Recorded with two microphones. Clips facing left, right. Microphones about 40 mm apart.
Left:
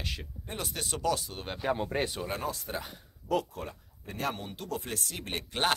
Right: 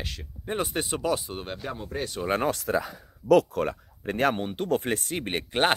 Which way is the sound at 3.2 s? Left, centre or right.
Right.